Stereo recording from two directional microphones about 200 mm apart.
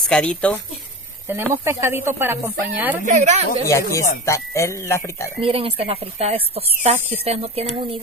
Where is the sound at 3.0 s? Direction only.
35° right (ahead or behind).